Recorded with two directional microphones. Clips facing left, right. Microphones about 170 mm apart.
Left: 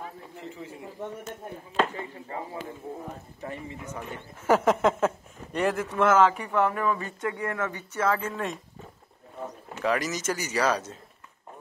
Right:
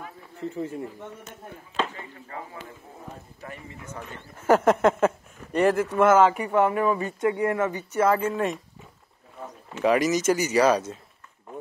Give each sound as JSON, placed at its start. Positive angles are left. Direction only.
{"t": 2.0, "sound": "speech", "side_deg": 25}
{"t": 4.5, "sound": "speech", "side_deg": 0}
{"t": 9.8, "sound": "speech", "side_deg": -15}